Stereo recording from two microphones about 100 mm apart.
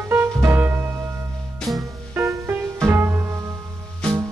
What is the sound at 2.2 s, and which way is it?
Music, 30° right (ahead or behind).